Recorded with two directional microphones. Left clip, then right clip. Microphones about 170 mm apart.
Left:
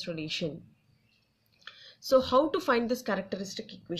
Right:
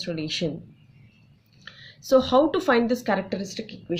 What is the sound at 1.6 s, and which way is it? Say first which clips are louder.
A woman's voice: right 2 dB; 30° left (ahead or behind).